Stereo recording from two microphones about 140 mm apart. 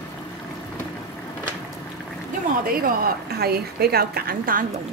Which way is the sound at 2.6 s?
90° right.